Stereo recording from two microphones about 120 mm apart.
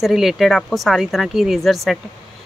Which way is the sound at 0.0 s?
Centre (ahead or behind).